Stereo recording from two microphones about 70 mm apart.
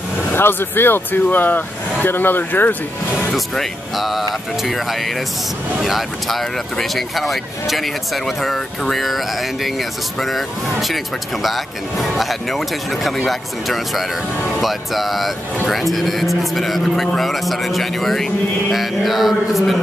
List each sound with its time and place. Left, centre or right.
0.3 s speech: left
3.3 s speech: centre